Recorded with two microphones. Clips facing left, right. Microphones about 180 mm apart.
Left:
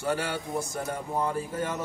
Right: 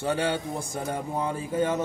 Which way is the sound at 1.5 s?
20° right (ahead or behind).